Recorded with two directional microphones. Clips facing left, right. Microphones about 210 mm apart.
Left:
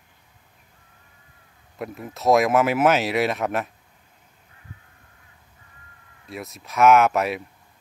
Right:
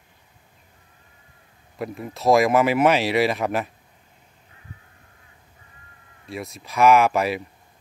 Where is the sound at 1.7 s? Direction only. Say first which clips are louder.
Right 2 dB; centre (ahead or behind).